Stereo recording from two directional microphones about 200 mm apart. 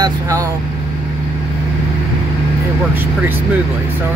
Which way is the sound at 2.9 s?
10° right (ahead or behind).